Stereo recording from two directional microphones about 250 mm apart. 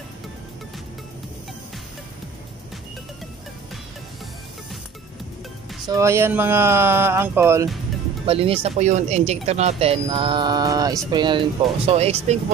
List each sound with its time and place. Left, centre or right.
5.9 s speech: centre
8.3 s speech: right